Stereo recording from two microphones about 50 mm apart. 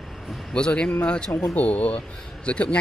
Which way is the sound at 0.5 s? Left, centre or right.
Left.